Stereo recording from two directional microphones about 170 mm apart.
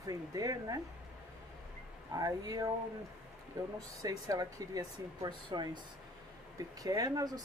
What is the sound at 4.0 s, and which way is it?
Speech, 20° right (ahead or behind).